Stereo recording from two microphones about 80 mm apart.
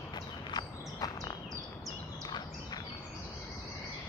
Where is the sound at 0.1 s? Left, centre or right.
Left.